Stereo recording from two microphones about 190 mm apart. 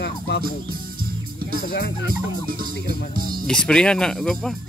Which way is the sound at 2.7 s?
55° left (ahead or behind).